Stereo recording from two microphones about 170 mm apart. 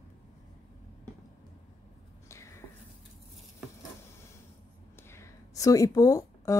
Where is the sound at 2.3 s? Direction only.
15° left (ahead or behind).